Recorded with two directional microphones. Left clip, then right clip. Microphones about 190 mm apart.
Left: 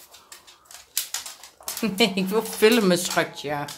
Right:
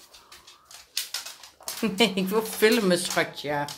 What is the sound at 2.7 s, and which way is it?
Speech, 15° left (ahead or behind).